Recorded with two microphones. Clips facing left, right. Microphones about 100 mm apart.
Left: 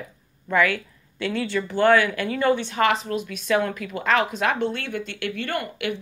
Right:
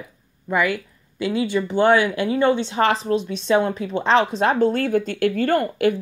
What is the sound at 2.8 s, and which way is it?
Speech, 30° right (ahead or behind).